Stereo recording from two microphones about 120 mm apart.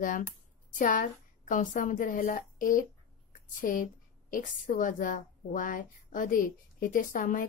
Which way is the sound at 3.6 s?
90° left.